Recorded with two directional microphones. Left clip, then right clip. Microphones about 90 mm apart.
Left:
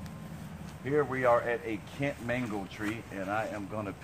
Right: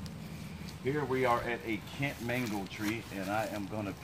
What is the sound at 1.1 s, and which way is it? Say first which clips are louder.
Speech: left 2 dB; centre (ahead or behind).